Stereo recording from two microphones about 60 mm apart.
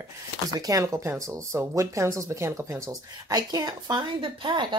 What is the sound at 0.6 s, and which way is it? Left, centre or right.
Speech, right.